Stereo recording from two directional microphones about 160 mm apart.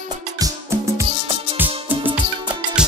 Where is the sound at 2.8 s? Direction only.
5° right (ahead or behind).